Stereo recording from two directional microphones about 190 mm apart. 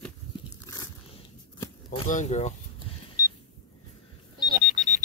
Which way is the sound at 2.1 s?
40° left (ahead or behind).